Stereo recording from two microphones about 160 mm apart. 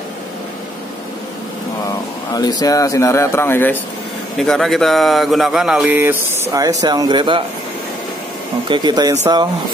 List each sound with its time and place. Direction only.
2.3 s speech: 25° left (ahead or behind)
4.4 s speech: centre (ahead or behind)
6.5 s speech: 20° right (ahead or behind)
8.6 s speech: 30° right (ahead or behind)